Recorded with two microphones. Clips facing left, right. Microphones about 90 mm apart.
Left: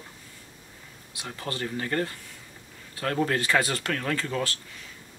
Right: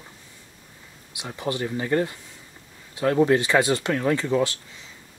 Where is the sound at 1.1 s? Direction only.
20° right (ahead or behind).